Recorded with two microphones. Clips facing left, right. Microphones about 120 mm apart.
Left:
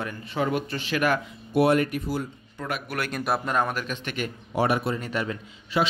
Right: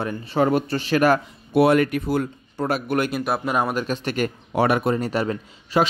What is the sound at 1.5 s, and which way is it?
Speech, 90° right.